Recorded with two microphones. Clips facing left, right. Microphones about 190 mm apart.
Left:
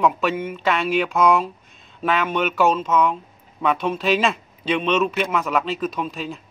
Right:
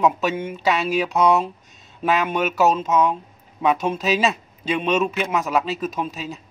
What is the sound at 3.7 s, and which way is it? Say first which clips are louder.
Speech: even; 45° right (ahead or behind).